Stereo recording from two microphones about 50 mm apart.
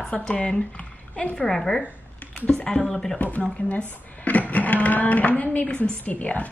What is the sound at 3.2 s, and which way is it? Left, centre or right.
Speech, left.